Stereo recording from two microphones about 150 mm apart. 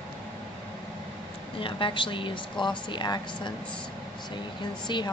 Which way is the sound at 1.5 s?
35° left (ahead or behind).